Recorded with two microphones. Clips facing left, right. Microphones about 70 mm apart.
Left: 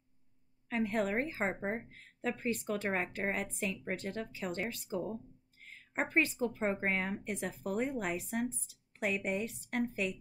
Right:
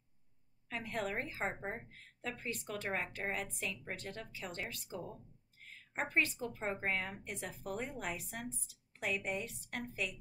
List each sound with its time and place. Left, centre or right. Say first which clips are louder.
0.7 s a woman's voice: left 7 dB; left
5.6 s a sound: left 2 dB; left
5.9 s a woman's voice: left 4 dB; left